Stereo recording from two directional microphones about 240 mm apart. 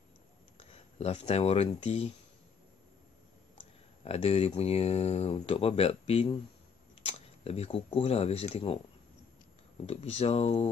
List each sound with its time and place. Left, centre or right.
0.6 s speech: left
3.5 s speech: left
9.8 s speech: left